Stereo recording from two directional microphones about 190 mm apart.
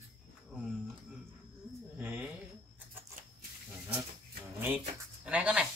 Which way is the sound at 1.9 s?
5° right (ahead or behind).